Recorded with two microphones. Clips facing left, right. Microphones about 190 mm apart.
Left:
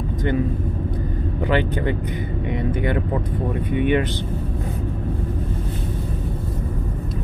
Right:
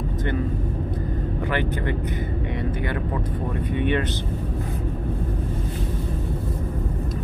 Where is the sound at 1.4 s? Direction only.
20° left (ahead or behind).